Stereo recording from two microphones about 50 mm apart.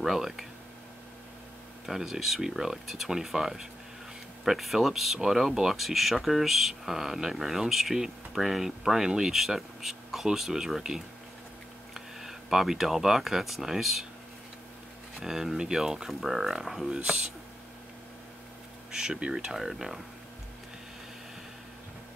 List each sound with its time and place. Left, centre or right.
0.0 s speech: centre
1.9 s speech: centre
15.2 s speech: centre
16.9 s speech: centre
18.9 s speech: centre
19.3 s speech: centre